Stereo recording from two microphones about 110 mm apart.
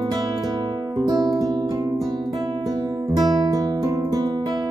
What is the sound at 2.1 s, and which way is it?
Guitar, 35° right (ahead or behind).